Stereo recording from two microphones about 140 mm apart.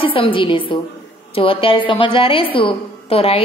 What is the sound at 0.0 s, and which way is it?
A woman's voice, 40° left (ahead or behind).